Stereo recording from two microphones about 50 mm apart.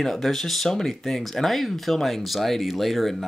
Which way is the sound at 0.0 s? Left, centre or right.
Centre.